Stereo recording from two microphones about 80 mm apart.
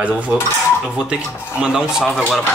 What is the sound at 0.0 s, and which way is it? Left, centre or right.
Speech, centre.